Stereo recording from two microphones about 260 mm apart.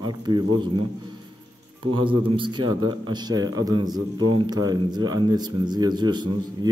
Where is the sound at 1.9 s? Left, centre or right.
Centre.